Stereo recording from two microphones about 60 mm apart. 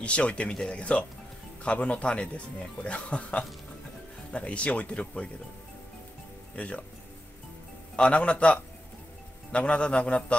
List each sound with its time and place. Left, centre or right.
0.0 s speech: centre
6.5 s speech: centre
7.9 s a man's voice: centre